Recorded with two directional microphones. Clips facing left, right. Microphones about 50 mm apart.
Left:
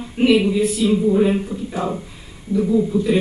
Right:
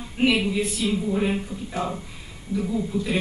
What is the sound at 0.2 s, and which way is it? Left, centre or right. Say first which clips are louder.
Speech: left 6 dB; centre.